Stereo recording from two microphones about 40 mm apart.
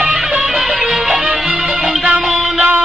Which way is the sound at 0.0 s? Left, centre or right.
Right.